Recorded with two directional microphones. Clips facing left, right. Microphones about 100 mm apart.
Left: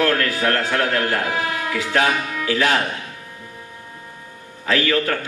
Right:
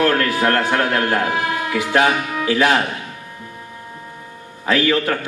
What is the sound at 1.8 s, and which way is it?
Speech, 20° right (ahead or behind).